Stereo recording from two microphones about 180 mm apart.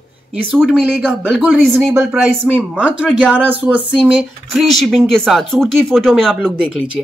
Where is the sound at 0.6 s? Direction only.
5° right (ahead or behind).